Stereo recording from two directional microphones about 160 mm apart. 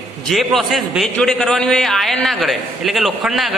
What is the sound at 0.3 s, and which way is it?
A man's voice, centre (ahead or behind).